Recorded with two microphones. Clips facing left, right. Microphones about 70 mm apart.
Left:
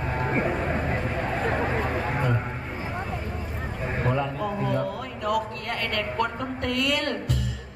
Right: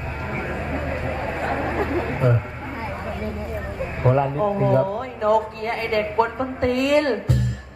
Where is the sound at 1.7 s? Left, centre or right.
Right.